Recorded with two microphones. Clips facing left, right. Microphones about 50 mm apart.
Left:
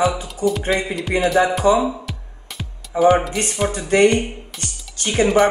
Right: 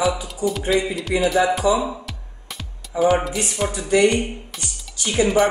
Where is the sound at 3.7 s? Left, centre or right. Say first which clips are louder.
Left 2 dB; left.